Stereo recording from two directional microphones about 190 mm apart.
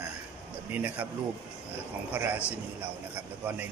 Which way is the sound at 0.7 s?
10° right (ahead or behind).